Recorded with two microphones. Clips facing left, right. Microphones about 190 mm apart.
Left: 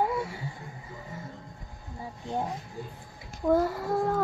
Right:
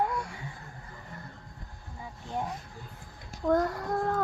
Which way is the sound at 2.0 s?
35° left (ahead or behind).